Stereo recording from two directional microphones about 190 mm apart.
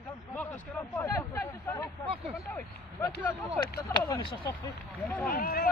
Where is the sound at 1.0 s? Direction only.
15° left (ahead or behind).